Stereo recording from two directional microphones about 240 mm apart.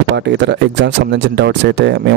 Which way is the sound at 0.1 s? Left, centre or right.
Right.